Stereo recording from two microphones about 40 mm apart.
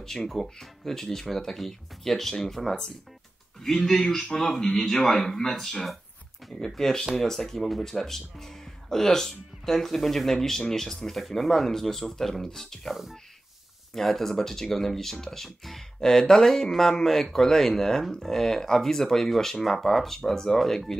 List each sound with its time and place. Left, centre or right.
0.0 s speech: centre